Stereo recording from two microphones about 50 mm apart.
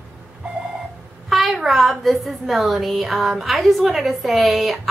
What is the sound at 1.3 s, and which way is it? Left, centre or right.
A woman's voice, centre.